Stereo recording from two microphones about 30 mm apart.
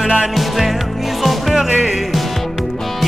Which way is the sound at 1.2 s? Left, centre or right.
Centre.